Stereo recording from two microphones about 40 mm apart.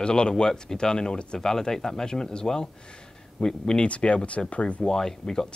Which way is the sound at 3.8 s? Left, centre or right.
Left.